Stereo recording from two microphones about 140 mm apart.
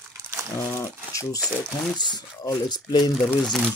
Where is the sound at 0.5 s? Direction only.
20° left (ahead or behind).